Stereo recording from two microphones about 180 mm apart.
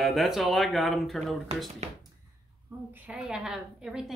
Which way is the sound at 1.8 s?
40° right (ahead or behind).